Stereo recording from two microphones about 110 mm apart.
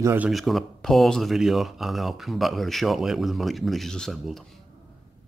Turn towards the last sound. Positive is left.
turn(degrees=0)  # may be behind; listen again after turning